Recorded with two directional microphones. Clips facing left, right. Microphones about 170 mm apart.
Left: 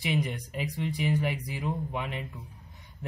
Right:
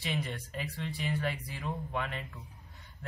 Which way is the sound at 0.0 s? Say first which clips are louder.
Left 6 dB; 15° left (ahead or behind).